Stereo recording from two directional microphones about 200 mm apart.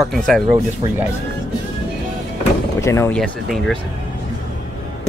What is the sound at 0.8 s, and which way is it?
Speech, 25° right (ahead or behind).